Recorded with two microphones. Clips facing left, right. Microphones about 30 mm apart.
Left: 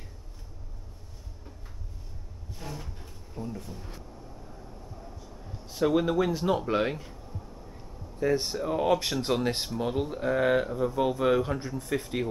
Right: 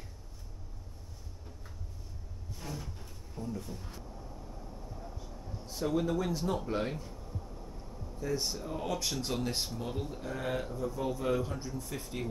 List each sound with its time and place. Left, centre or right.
2.6 s a sound: centre
5.7 s speech: left
7.2 s vehicle: centre
7.7 s speech: left